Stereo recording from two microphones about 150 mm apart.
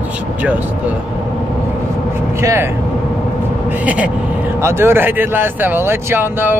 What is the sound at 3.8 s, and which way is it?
Speech, 10° right (ahead or behind).